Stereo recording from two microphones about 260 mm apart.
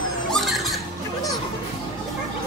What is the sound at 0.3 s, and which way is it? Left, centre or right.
Bird, centre.